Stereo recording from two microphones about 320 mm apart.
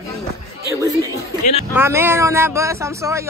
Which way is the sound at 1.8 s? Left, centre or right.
Centre.